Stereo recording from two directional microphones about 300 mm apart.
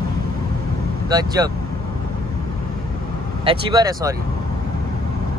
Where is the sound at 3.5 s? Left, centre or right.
Centre.